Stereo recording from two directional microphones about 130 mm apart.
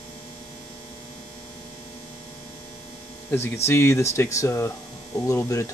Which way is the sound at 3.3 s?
20° left (ahead or behind).